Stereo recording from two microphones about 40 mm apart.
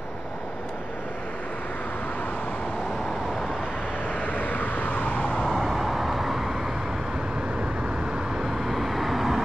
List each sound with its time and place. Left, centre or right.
4.1 s vehicle: left
5.4 s vehicle: centre
8.4 s vehicle: centre